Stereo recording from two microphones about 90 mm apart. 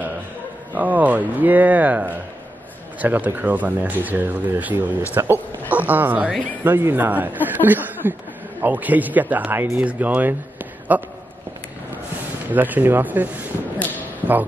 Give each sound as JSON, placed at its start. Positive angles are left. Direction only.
{"t": 0.7, "sound": "speech", "side_deg": -20}
{"t": 12.4, "sound": "speech", "side_deg": -20}